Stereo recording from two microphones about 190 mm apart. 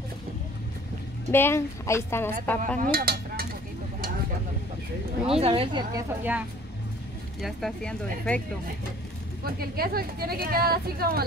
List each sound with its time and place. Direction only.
1.3 s speech: 15° left (ahead or behind)
2.8 s speech: 50° right (ahead or behind)
5.3 s speech: 30° right (ahead or behind)
7.4 s speech: 5° left (ahead or behind)
9.4 s speech: 50° right (ahead or behind)